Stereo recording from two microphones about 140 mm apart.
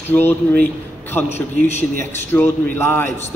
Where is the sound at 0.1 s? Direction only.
15° left (ahead or behind).